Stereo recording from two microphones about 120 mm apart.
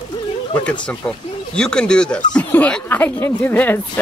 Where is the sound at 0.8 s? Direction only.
5° left (ahead or behind).